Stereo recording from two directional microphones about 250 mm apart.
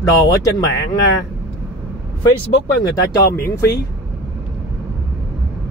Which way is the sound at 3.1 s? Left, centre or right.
Centre.